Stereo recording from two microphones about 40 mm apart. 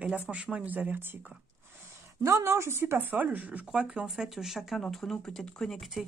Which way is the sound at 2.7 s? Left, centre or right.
Right.